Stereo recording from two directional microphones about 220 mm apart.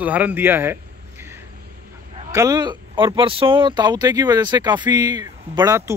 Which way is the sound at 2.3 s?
15° right (ahead or behind).